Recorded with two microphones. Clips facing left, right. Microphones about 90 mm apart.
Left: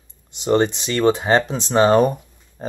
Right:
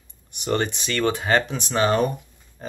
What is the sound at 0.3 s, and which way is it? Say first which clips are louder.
Speech: left 7 dB; 25° left (ahead or behind).